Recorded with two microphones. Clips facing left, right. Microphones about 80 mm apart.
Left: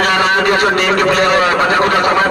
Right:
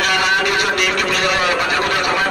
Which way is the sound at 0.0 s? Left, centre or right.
Left.